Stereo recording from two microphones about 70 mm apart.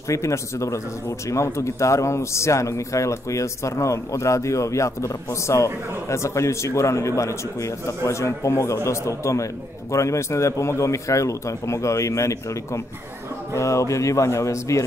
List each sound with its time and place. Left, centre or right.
0.1 s speech: left